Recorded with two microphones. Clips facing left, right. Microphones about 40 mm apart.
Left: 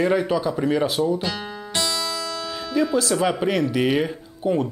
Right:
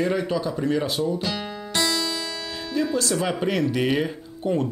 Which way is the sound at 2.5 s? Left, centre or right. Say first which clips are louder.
Left 3 dB; centre.